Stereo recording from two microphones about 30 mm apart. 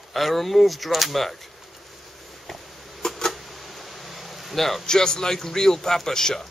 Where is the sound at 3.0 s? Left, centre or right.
Centre.